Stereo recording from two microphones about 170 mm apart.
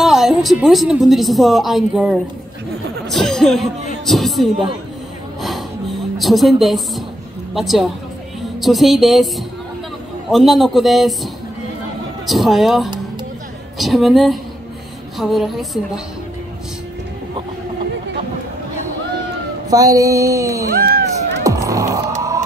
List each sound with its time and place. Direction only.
0.0 s speech: centre (ahead or behind)
5.4 s a sound: centre (ahead or behind)
7.5 s a man's voice: centre (ahead or behind)
10.3 s a man's voice: centre (ahead or behind)
12.3 s a man's voice: centre (ahead or behind)
19.7 s music: 20° right (ahead or behind)
20.7 s a sound: 60° right (ahead or behind)
21.5 s music: 20° right (ahead or behind)